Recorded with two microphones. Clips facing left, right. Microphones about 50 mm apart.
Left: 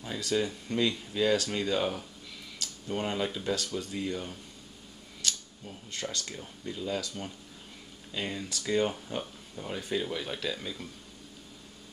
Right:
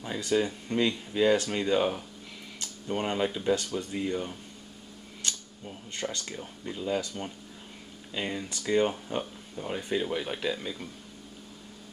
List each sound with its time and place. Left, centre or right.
0.0 s speech: centre
5.7 s speech: centre